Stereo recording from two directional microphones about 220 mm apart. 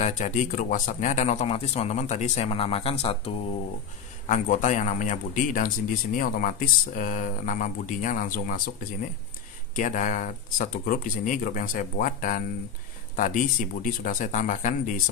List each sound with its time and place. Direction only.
0.0 s speech: 30° left (ahead or behind)
9.8 s speech: 35° left (ahead or behind)